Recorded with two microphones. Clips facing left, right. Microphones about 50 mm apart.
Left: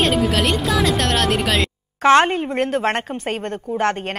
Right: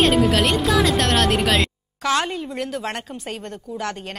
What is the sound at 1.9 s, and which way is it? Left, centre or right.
Speech, left.